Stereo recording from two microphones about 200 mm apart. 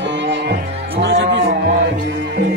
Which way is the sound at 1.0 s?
70° right (ahead or behind).